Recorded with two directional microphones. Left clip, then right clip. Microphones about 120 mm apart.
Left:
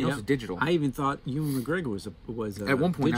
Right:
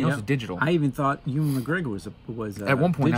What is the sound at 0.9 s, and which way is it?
Speech, 50° left (ahead or behind).